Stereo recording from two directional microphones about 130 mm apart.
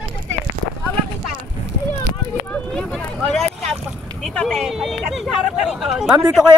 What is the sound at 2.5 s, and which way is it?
Vehicle, 5° left (ahead or behind).